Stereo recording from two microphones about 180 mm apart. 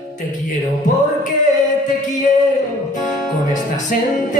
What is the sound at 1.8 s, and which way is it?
Music, 45° left (ahead or behind).